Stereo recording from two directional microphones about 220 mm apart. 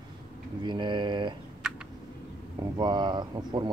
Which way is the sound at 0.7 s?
20° right (ahead or behind).